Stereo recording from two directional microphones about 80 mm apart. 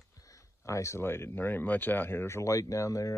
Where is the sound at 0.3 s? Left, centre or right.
Left.